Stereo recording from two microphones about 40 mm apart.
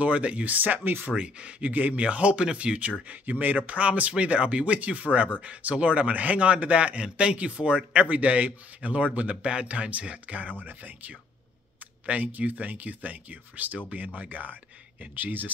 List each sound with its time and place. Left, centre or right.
0.0 s a man's voice: right
0.6 s speech: right
1.1 s a man's voice: right
1.7 s a man's voice: right
3.1 s a man's voice: right
8.1 s a man's voice: right